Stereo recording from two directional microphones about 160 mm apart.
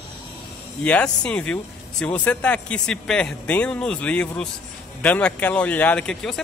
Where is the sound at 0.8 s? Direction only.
5° left (ahead or behind).